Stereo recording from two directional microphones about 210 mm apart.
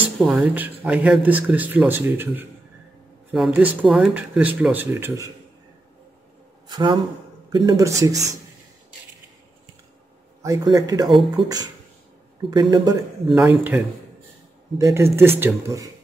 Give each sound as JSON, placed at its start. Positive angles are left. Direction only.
{"t": 0.2, "sound": "speech", "side_deg": -5}
{"t": 6.7, "sound": "speech", "side_deg": -20}
{"t": 10.4, "sound": "speech", "side_deg": -15}
{"t": 13.3, "sound": "speech", "side_deg": -5}